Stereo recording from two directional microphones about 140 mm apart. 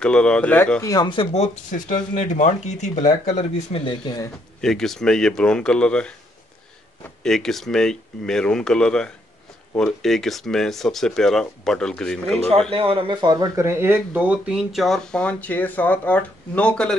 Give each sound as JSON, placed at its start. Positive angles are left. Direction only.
{"t": 0.0, "sound": "speech", "side_deg": 5}
{"t": 3.8, "sound": "speech", "side_deg": 35}
{"t": 4.6, "sound": "speech", "side_deg": 5}
{"t": 7.2, "sound": "speech", "side_deg": 0}
{"t": 12.7, "sound": "speech", "side_deg": -40}